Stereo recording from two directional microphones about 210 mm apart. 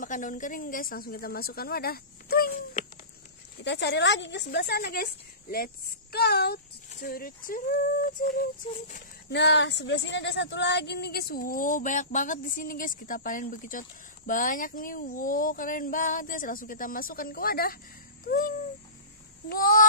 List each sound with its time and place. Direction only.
0.0 s a woman's voice: 40° left (ahead or behind)
3.6 s a woman's voice: 55° left (ahead or behind); by 9.0 s 35° left (ahead or behind)
9.3 s speech: 55° left (ahead or behind)
18.2 s a sound: 40° left (ahead or behind)
19.5 s speech: 40° left (ahead or behind)